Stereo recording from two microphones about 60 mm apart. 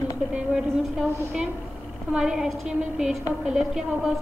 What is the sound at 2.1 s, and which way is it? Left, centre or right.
A woman's voice, centre.